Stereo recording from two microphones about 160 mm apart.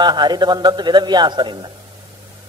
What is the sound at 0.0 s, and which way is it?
A man's voice, 25° right (ahead or behind).